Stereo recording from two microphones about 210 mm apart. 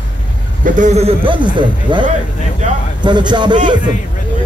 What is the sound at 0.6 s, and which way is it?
Speech, 35° right (ahead or behind).